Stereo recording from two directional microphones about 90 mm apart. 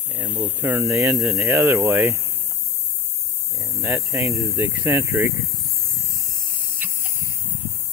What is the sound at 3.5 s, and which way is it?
Speech, 35° right (ahead or behind).